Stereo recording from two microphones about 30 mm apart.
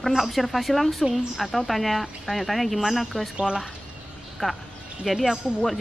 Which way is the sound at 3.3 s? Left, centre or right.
Right.